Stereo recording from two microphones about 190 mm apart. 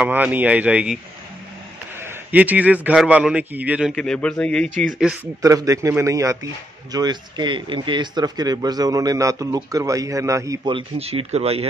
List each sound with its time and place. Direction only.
0.0 s speech: 5° right (ahead or behind)
2.0 s a man's voice: 10° right (ahead or behind)
3.9 s a man's voice: 5° left (ahead or behind)
5.4 s a man's voice: 15° right (ahead or behind); by 11.6 s 30° right (ahead or behind)